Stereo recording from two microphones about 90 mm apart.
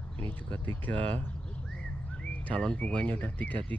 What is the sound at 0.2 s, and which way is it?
Speech, 20° left (ahead or behind).